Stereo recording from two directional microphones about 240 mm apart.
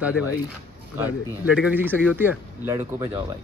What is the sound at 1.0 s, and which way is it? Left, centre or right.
A man's voice, centre.